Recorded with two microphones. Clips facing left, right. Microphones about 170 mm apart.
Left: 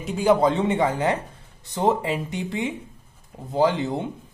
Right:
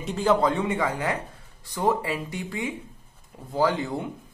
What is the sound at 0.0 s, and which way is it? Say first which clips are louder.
Speech: left 3 dB; 10° left (ahead or behind).